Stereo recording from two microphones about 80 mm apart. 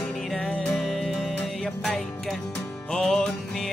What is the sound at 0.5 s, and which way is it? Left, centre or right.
Music, centre.